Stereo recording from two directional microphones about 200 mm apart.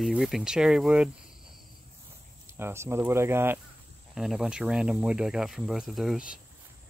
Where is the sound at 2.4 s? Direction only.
10° right (ahead or behind).